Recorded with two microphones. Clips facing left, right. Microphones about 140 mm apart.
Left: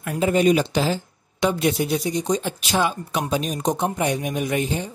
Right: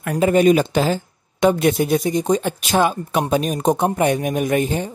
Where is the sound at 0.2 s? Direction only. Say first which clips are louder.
Right 4 dB; 50° right (ahead or behind).